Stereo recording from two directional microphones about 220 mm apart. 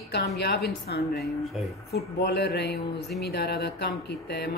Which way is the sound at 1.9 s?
45° left (ahead or behind).